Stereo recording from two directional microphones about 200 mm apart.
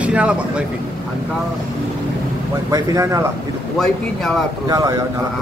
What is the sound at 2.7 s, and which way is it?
Speech, 15° right (ahead or behind).